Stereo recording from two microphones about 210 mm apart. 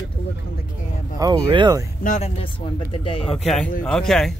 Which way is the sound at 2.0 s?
40° left (ahead or behind).